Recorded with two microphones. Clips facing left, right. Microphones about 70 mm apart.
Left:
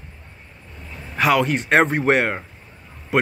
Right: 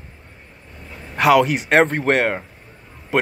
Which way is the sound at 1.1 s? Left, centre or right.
Centre.